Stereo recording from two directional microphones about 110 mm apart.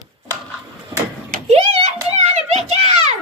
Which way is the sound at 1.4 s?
65° right (ahead or behind).